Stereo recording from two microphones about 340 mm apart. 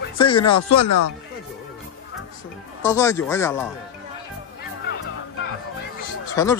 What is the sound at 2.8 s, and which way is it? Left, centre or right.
Speech, centre.